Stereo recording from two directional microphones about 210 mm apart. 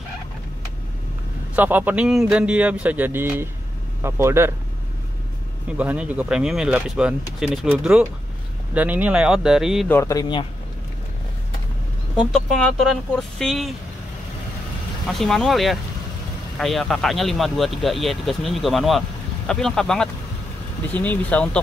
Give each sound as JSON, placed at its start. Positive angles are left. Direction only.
{"t": 1.5, "sound": "a man's voice", "side_deg": -10}
{"t": 5.7, "sound": "speech", "side_deg": -5}
{"t": 9.8, "sound": "speech", "side_deg": 15}
{"t": 13.4, "sound": "speech", "side_deg": 0}
{"t": 15.0, "sound": "speech", "side_deg": 0}